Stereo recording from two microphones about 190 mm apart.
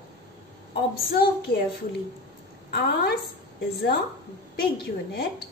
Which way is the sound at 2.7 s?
55° left (ahead or behind).